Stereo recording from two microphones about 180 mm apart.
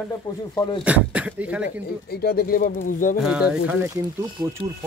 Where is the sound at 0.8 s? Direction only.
5° right (ahead or behind).